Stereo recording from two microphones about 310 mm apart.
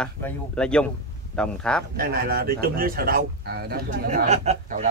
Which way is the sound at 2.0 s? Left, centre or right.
Right.